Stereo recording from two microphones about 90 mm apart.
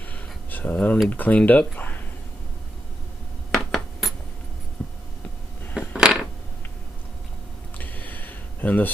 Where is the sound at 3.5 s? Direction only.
Centre (ahead or behind).